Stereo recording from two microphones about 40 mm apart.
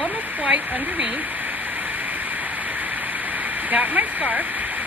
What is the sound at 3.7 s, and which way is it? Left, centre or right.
Speech, right.